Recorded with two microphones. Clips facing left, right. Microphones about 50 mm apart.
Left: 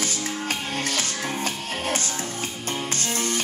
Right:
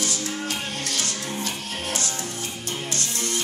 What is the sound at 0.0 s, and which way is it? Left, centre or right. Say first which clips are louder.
Music: even; left.